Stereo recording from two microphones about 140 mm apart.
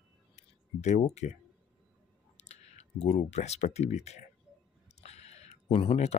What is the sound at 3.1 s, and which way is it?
Speech, 55° left (ahead or behind).